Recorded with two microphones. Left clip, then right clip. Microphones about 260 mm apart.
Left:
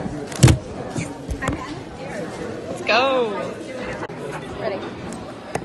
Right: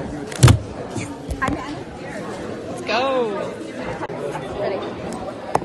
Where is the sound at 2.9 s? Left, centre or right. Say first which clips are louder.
Left 2 dB; centre.